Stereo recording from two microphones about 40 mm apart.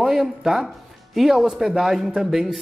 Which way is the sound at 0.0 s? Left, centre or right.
Centre.